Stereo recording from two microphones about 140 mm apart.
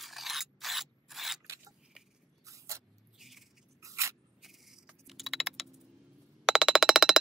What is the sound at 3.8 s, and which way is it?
Scissors, 20° right (ahead or behind).